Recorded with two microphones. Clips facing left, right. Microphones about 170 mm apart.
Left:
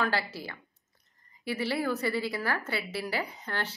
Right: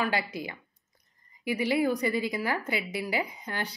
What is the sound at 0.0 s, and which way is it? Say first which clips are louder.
A woman's voice: right 1 dB; 15° right (ahead or behind).